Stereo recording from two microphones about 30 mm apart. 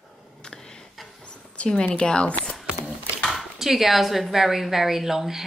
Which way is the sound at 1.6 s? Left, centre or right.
Left.